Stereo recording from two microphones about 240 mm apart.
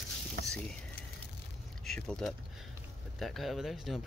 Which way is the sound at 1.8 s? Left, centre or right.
Centre.